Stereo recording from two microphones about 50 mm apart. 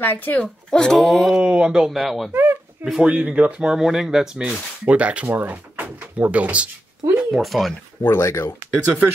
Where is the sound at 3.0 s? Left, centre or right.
Right; by 4.3 s centre.